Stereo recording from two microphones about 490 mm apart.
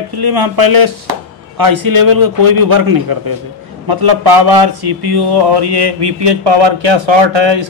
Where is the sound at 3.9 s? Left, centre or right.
Right.